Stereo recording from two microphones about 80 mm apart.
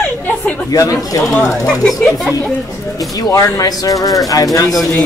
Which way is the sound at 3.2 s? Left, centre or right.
Left.